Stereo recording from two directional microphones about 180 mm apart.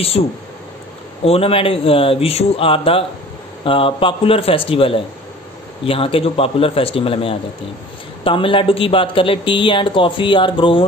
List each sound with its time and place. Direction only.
0.2 s speech: 35° left (ahead or behind)